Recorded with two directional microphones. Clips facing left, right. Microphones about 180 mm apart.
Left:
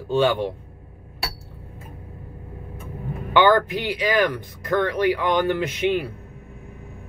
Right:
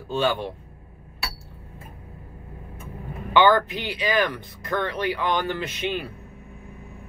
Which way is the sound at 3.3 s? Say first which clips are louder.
Left 1 dB; 10° left (ahead or behind).